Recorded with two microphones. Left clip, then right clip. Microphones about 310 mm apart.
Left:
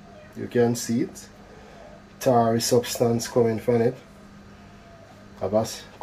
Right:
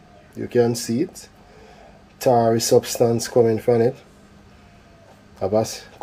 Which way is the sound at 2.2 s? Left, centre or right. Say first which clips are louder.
Right 3 dB; right.